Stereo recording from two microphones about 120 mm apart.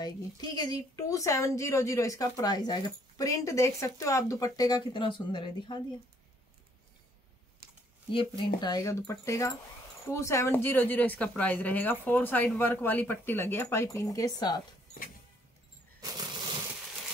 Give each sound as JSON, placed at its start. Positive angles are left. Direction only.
{"t": 0.0, "sound": "speech", "side_deg": 35}
{"t": 8.1, "sound": "speech", "side_deg": 40}
{"t": 16.0, "sound": "a sound", "side_deg": -35}